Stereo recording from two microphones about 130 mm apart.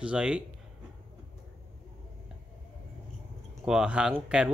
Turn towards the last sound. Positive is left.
turn(degrees=-5)  # may be behind; listen again after turning